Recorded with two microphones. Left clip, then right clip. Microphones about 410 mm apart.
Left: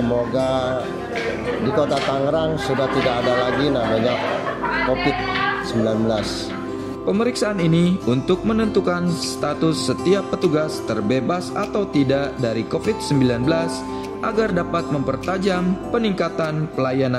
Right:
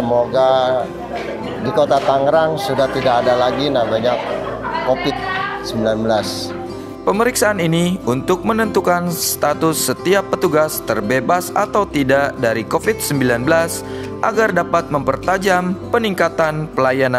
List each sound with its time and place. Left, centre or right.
0.3 s a sound: right
1.8 s speech: right
5.9 s speech: right